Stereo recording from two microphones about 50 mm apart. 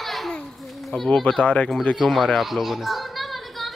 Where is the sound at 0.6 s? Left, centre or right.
Centre.